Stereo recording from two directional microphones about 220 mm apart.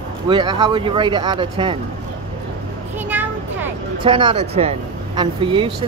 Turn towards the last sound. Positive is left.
turn(degrees=-25)  # may be behind; listen again after turning